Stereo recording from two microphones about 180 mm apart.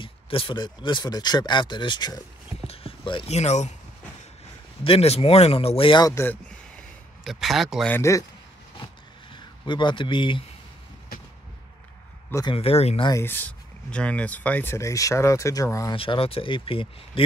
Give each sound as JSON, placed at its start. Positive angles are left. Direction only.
{"t": 0.0, "sound": "speech", "side_deg": 30}
{"t": 4.8, "sound": "speech", "side_deg": 35}
{"t": 7.2, "sound": "speech", "side_deg": 0}
{"t": 8.0, "sound": "speech", "side_deg": 15}
{"t": 9.3, "sound": "a man's voice", "side_deg": 25}
{"t": 12.3, "sound": "speech", "side_deg": 15}
{"t": 12.5, "sound": "speech", "side_deg": 35}
{"t": 13.1, "sound": "speech", "side_deg": 10}
{"t": 16.0, "sound": "speech", "side_deg": 30}